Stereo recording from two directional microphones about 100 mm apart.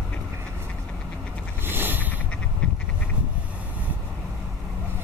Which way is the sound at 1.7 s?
20° right (ahead or behind).